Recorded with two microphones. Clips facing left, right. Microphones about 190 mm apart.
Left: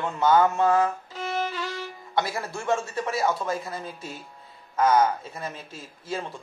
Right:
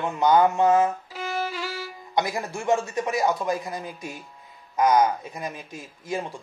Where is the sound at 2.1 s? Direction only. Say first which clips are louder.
Right 2 dB; 15° right (ahead or behind).